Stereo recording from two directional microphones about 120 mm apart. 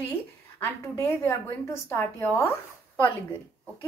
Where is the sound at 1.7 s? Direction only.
20° left (ahead or behind).